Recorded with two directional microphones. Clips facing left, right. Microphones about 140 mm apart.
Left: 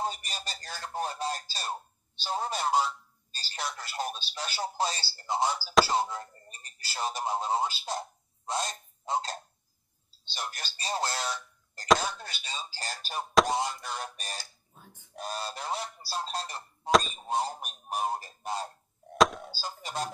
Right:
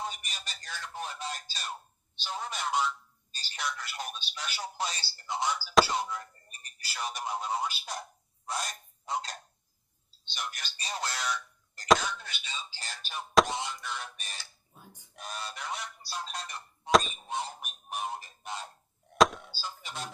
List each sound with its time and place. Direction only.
0.0 s speech: 35° left (ahead or behind)
14.8 s a sound: 15° right (ahead or behind)
15.1 s speech: 35° left (ahead or behind)
16.9 s speech: centre (ahead or behind)
17.3 s speech: 35° left (ahead or behind)
19.1 s a sound: centre (ahead or behind)
19.4 s goose: 40° left (ahead or behind)